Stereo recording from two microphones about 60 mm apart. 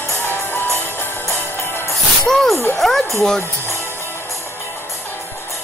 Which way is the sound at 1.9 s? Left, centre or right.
Centre.